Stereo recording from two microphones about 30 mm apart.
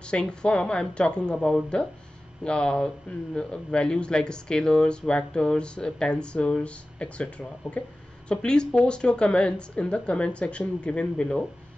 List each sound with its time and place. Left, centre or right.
0.0 s speech: left
1.3 s speech: centre
2.4 s speech: left
8.3 s speech: left